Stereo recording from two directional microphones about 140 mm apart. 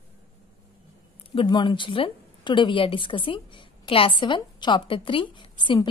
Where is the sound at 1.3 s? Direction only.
35° left (ahead or behind).